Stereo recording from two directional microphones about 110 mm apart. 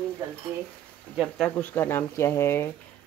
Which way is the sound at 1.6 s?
20° left (ahead or behind).